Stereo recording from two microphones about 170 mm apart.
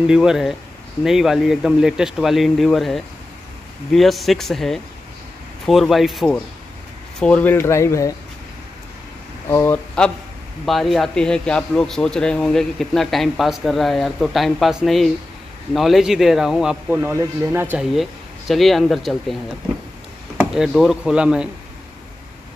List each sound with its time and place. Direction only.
0.0 s a man's voice: 5° right (ahead or behind); by 8.1 s 15° left (ahead or behind)
9.5 s speech: 15° left (ahead or behind)
10.0 s a man's voice: 5° left (ahead or behind); by 17.8 s 10° right (ahead or behind)
18.5 s a man's voice: centre (ahead or behind)
20.3 s a man's voice: centre (ahead or behind)